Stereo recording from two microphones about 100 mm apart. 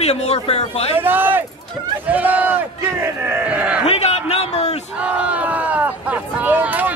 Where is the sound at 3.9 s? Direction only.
90° left.